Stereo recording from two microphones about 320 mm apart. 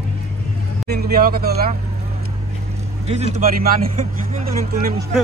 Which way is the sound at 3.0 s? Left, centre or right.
Centre.